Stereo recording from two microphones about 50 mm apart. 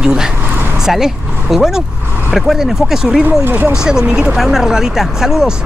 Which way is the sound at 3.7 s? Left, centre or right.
Centre.